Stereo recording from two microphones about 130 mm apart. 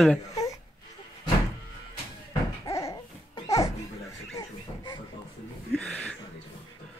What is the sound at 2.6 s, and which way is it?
Babbling, 25° left (ahead or behind).